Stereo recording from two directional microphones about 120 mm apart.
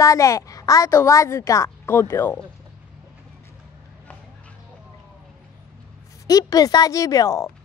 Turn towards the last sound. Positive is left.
turn(degrees=25)  # may be behind; listen again after turning